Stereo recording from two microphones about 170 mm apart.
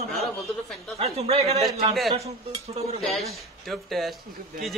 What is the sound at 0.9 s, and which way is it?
Speech, 35° right (ahead or behind).